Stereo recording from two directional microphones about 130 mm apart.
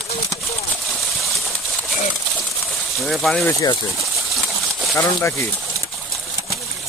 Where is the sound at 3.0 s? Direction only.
5° left (ahead or behind).